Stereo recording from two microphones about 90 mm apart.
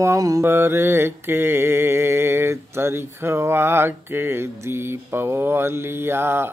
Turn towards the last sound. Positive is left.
turn(degrees=-25)  # may be behind; listen again after turning